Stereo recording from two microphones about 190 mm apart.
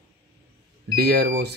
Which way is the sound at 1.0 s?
55° right (ahead or behind).